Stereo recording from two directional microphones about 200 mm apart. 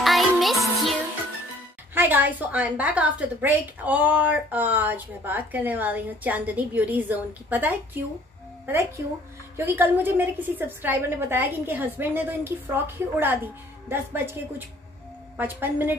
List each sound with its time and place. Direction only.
0.0 s music: centre (ahead or behind)
2.0 s a woman's voice: 10° right (ahead or behind)
15.3 s a woman's voice: 10° right (ahead or behind)